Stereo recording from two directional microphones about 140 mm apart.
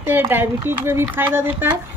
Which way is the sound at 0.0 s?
15° right (ahead or behind).